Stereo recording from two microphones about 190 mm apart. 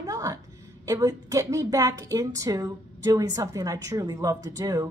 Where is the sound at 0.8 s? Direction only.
20° right (ahead or behind).